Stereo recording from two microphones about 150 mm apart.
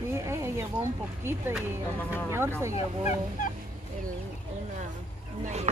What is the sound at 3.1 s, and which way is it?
Fowl, 60° left (ahead or behind).